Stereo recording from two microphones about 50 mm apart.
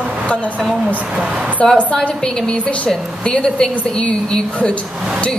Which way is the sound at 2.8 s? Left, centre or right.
Centre.